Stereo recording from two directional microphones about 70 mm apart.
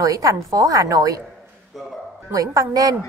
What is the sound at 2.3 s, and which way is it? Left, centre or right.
Speech, right.